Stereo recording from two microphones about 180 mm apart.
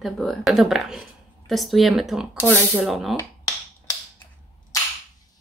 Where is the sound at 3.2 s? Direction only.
15° left (ahead or behind).